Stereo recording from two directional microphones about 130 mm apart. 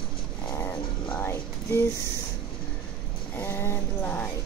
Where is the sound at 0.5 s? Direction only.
15° left (ahead or behind).